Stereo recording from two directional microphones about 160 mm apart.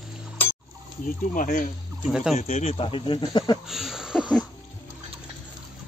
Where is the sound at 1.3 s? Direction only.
55° left (ahead or behind).